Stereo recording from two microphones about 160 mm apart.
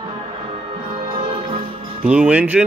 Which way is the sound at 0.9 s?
30° right (ahead or behind).